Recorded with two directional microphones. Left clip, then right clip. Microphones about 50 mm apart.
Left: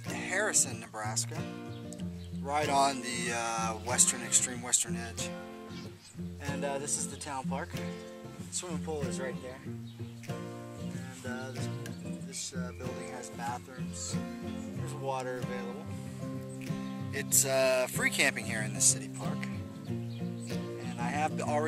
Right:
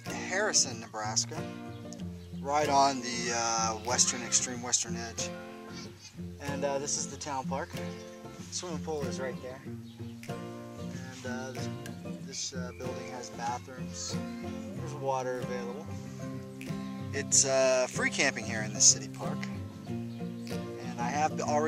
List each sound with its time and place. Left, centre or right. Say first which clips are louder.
0.1 s speech: right 1 dB; centre
6.4 s speech: right 3 dB; centre
8.5 s speech: right 2 dB; centre
11.2 s speech: right 2 dB; centre
12.8 s speech: right 2 dB; centre
16.6 s music: right 1 dB; centre
17.1 s speech: right 3 dB; centre
20.4 s music: right 1 dB; centre